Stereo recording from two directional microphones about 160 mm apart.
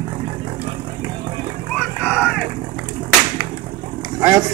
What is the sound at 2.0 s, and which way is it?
Vehicle, 5° right (ahead or behind).